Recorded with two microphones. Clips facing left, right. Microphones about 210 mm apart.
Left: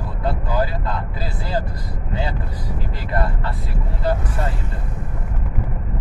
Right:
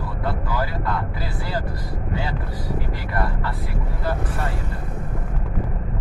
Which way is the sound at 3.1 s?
25° left (ahead or behind).